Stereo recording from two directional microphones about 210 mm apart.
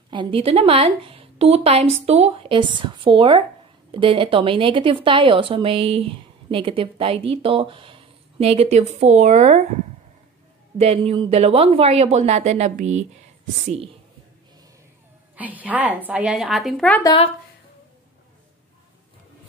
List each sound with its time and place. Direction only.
0.1 s speech: 25° right (ahead or behind)
10.8 s speech: 30° right (ahead or behind)
15.3 s a woman's voice: 5° right (ahead or behind)
17.0 s speech: 25° left (ahead or behind)